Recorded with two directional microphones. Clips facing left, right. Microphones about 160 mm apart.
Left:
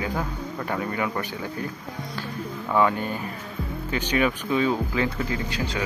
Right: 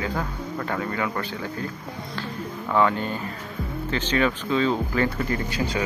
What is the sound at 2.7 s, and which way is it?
Speech, 15° left (ahead or behind).